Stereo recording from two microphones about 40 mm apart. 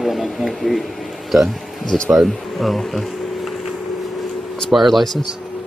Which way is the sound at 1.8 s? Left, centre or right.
Centre.